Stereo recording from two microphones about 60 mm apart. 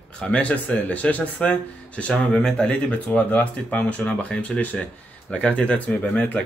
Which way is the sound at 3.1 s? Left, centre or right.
Left.